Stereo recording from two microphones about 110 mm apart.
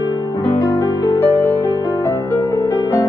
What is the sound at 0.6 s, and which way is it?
Music, 30° left (ahead or behind).